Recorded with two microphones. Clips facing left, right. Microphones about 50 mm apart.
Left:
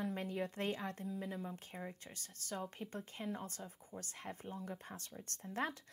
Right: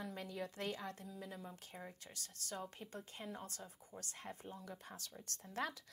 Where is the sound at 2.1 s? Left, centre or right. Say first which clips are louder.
Left 1 dB; left.